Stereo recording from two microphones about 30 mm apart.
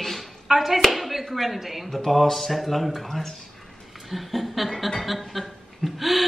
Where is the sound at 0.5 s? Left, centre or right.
Centre.